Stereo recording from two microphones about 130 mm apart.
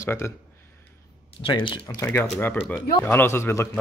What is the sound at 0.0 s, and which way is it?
Speech, 20° left (ahead or behind).